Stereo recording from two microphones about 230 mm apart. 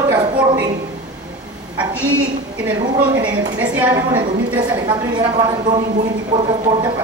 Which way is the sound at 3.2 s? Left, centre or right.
Centre.